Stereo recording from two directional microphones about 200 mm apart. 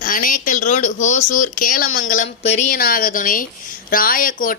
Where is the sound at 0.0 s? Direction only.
45° left (ahead or behind).